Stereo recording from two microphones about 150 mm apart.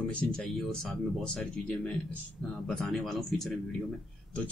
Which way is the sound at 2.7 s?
Centre (ahead or behind).